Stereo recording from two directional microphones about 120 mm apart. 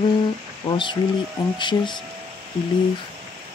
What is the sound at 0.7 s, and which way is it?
A woman's voice, 40° left (ahead or behind).